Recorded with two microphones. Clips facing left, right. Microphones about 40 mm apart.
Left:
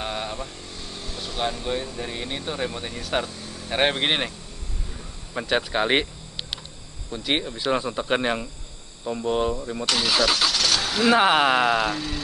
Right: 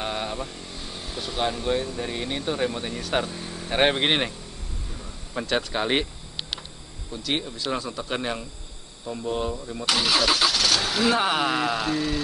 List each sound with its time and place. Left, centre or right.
0.0 s speech: centre
3.3 s a sound: centre
3.6 s speech: centre
5.3 s speech: centre
7.1 s speech: left
9.8 s speech: centre
11.1 s speech: left
11.6 s speech: centre
11.9 s speech: centre